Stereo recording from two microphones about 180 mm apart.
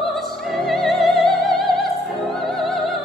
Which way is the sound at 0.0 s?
Centre (ahead or behind).